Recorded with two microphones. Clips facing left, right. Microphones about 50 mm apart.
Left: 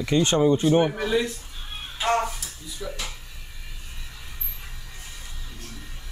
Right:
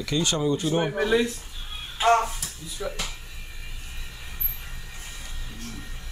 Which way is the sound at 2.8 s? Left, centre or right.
Centre.